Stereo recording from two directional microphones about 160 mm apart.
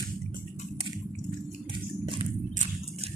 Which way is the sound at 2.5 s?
50° right (ahead or behind).